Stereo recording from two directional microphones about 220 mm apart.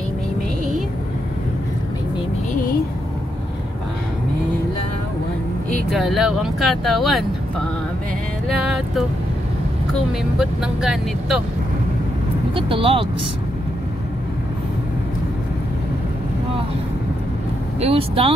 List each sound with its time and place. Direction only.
5.9 s speech: centre (ahead or behind)
8.5 s music: centre (ahead or behind)
10.6 s speech: centre (ahead or behind)
12.5 s speech: 25° right (ahead or behind)
17.7 s speech: 25° right (ahead or behind)